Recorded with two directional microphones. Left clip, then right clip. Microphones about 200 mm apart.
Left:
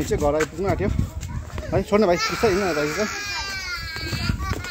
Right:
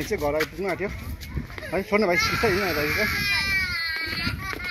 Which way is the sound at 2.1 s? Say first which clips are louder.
Even; 50° left (ahead or behind).